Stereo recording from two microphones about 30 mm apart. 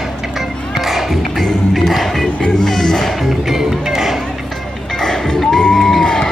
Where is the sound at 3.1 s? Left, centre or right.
Centre.